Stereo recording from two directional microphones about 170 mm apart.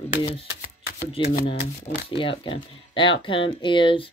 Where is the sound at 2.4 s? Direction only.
30° left (ahead or behind).